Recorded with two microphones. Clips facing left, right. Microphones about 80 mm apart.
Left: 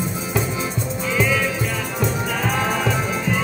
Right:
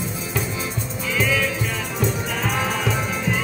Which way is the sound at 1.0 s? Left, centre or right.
Centre.